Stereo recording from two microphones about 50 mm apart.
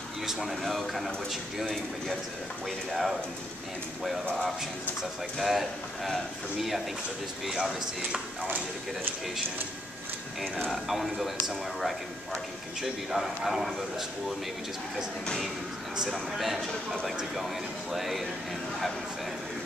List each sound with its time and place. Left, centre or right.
0.3 s speech: centre
5.4 s speech: centre
10.4 s speech: centre
12.8 s speech: centre
16.1 s speech: centre
17.9 s speech: centre